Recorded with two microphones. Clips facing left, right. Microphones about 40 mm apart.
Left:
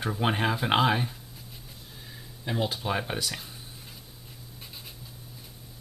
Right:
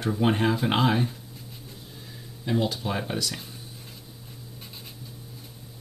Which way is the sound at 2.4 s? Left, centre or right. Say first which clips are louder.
Right 3 dB; centre.